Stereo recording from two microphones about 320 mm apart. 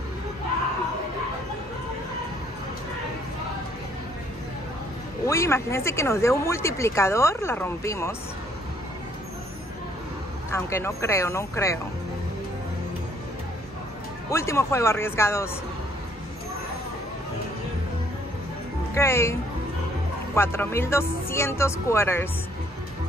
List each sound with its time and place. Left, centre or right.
5.2 s speech: centre
10.5 s speech: centre
14.3 s speech: centre
18.9 s speech: centre
20.3 s speech: centre